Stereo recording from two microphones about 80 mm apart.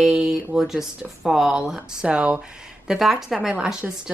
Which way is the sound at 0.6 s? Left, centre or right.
Centre.